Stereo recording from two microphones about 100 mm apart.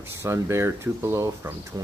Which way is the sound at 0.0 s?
25° right (ahead or behind).